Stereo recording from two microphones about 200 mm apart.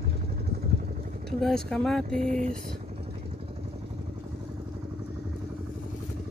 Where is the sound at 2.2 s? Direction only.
40° right (ahead or behind).